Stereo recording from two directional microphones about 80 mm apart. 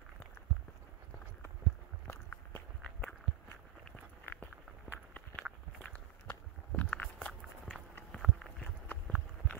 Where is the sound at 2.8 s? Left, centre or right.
Centre.